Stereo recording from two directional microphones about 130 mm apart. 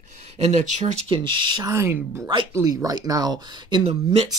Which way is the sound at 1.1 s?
40° right (ahead or behind).